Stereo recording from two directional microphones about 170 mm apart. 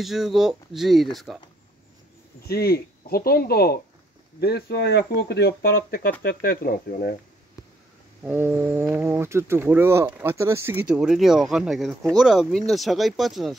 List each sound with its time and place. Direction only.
0.0 s speech: centre (ahead or behind)
2.4 s speech: 65° left (ahead or behind)
8.2 s speech: 10° right (ahead or behind)
11.0 s speech: 5° right (ahead or behind)